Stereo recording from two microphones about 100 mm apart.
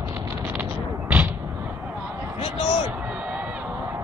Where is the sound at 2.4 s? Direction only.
75° left (ahead or behind).